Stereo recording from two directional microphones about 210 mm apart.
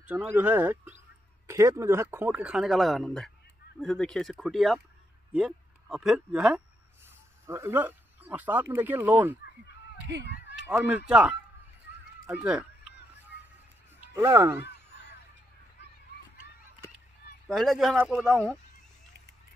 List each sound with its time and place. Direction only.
0.0 s a man's voice: 10° right (ahead or behind)
10.2 s speech: 55° left (ahead or behind)
10.7 s speech: 5° right (ahead or behind)
14.0 s speech: 10° right (ahead or behind)
14.6 s honk: 55° left (ahead or behind)
17.5 s a man's voice: centre (ahead or behind)